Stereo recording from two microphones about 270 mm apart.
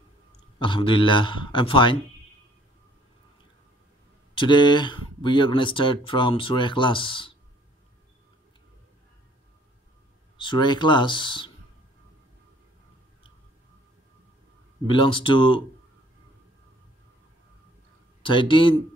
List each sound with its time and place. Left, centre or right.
0.6 s speech: centre
4.4 s speech: centre
10.3 s speech: centre
14.9 s speech: centre
18.2 s speech: centre